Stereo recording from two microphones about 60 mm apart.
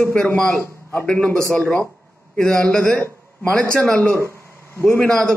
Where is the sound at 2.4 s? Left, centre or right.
Centre.